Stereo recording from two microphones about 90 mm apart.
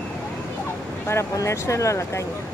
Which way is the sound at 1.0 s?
35° left (ahead or behind).